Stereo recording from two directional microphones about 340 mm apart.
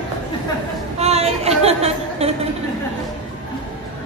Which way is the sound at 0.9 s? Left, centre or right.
Centre.